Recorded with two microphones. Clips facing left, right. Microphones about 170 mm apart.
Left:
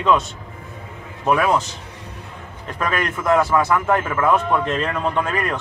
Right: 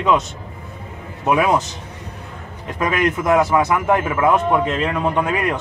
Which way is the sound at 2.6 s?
15° right (ahead or behind).